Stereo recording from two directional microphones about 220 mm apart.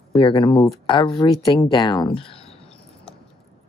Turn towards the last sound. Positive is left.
turn(degrees=5)  # may be behind; listen again after turning